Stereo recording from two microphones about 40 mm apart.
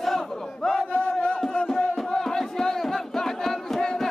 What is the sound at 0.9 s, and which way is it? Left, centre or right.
Music, left.